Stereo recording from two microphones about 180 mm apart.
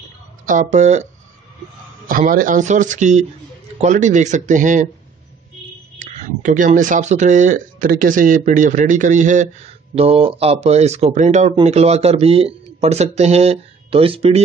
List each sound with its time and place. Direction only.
0.5 s speech: 45° right (ahead or behind)
2.0 s speech: 50° right (ahead or behind)
5.9 s speech: 40° right (ahead or behind)